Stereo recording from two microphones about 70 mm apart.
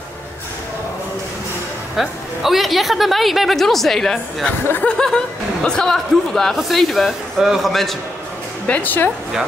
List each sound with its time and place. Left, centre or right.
2.0 s speech: centre
8.6 s speech: left